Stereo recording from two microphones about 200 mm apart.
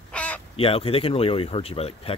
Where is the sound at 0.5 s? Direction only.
30° left (ahead or behind).